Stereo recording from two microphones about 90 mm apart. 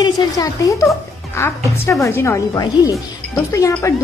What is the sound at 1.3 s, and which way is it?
A woman's voice, 30° left (ahead or behind).